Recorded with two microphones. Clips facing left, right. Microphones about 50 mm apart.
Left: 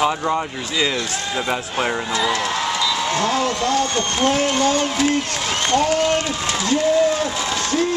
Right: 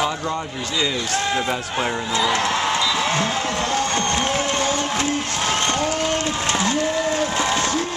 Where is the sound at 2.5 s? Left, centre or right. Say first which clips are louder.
Right 1 dB; centre.